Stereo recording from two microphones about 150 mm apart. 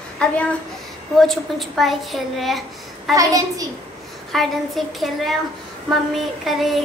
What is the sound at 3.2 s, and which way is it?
Speech, 25° right (ahead or behind).